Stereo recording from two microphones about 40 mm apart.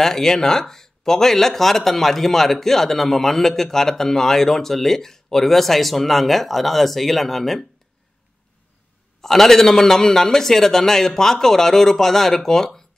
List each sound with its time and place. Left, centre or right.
0.0 s speech: centre
9.2 s speech: centre